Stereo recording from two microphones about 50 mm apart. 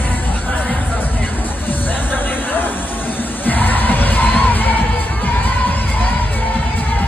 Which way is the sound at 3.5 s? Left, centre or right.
Left.